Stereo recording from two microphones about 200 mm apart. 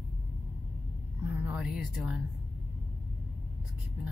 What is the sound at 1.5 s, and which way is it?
Speech, centre (ahead or behind).